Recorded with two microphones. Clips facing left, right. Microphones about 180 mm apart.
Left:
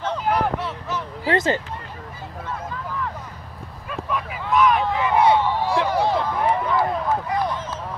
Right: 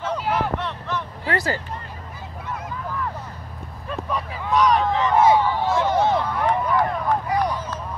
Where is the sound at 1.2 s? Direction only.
20° left (ahead or behind).